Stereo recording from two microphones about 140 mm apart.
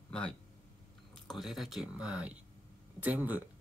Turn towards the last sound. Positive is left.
turn(degrees=-10)  # may be behind; listen again after turning